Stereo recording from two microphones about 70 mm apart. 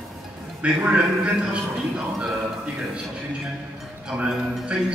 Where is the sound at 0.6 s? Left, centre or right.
Right.